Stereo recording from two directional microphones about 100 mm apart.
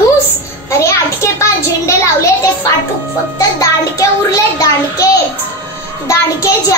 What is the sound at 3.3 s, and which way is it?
A child's voice, 35° left (ahead or behind).